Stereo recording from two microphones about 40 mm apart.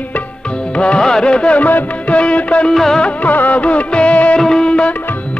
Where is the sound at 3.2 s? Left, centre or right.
Left.